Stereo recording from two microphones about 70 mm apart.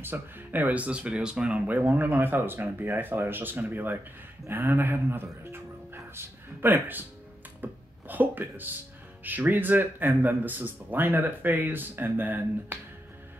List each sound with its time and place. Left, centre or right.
0.0 s speech: right